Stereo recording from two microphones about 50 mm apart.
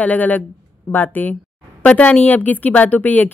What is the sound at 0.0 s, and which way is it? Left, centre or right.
A woman's voice, left.